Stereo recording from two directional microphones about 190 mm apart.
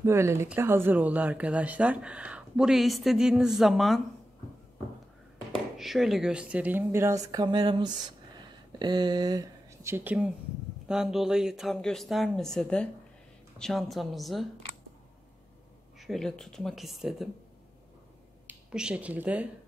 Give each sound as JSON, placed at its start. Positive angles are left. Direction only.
{"t": 0.0, "sound": "speech", "side_deg": -15}
{"t": 5.8, "sound": "speech", "side_deg": 0}
{"t": 16.0, "sound": "speech", "side_deg": 0}
{"t": 18.5, "sound": "speech", "side_deg": -5}